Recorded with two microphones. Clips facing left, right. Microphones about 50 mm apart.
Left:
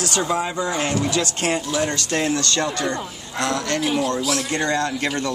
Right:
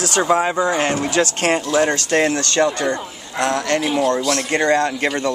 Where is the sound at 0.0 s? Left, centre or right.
Right.